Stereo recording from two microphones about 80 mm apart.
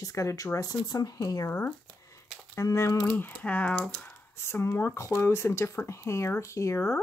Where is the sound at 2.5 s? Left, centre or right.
Left.